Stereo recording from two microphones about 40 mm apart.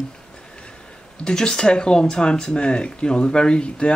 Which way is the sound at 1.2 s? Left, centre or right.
Centre.